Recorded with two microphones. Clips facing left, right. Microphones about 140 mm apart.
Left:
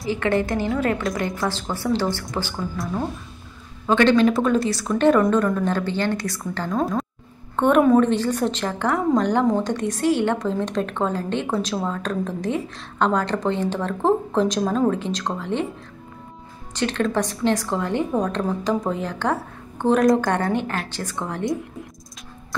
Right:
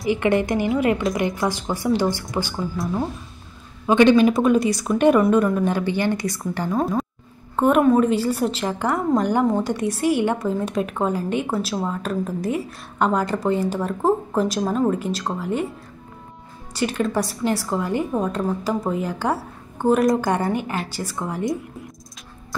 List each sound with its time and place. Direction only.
0.0 s a woman's voice: 15° right (ahead or behind)
2.5 s speech: 5° right (ahead or behind)
3.8 s a woman's voice: 15° right (ahead or behind)
16.7 s a woman's voice: 10° right (ahead or behind)